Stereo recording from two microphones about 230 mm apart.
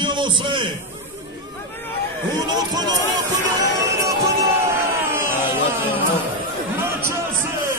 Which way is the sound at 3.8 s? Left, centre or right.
Centre.